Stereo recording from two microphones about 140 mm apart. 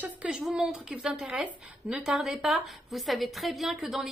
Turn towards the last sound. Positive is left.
turn(degrees=0)  # may be behind; listen again after turning